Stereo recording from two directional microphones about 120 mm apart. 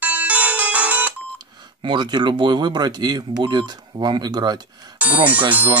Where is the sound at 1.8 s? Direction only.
40° right (ahead or behind).